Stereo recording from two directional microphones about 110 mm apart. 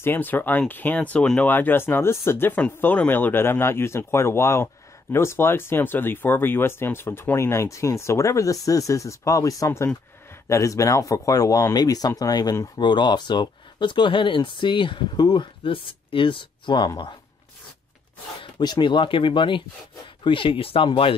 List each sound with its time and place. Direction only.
0.0 s speech: 20° left (ahead or behind); by 17.1 s 40° left (ahead or behind)
18.4 s speech: 40° left (ahead or behind)